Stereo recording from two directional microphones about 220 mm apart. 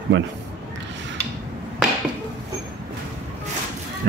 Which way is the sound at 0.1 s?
55° right (ahead or behind).